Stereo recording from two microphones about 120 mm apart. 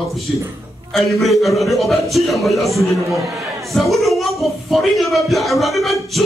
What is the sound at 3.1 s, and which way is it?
Speech, 25° right (ahead or behind).